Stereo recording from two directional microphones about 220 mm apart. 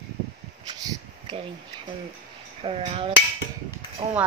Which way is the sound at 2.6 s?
25° right (ahead or behind).